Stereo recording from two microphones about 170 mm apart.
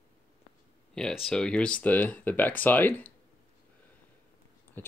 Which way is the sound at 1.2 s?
5° left (ahead or behind).